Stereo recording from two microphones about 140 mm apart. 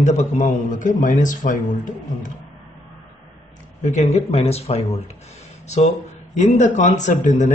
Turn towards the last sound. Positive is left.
turn(degrees=60)  # may be behind; listen again after turning